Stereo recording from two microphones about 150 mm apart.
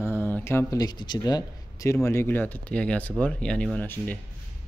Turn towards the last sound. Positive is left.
turn(degrees=10)  # may be behind; listen again after turning